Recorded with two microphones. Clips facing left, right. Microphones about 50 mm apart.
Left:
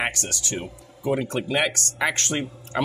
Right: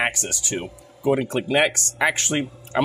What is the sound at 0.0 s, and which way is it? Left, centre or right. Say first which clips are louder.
Speech: right 3 dB; centre.